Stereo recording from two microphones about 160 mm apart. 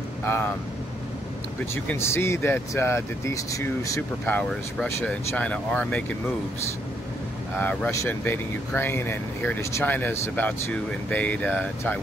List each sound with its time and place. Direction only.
0.2 s speech: 15° left (ahead or behind)
1.9 s speech: 15° left (ahead or behind)
4.4 s speech: 5° left (ahead or behind)
7.5 s speech: 10° left (ahead or behind)